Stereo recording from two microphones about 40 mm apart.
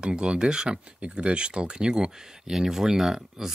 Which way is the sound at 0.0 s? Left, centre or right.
Right.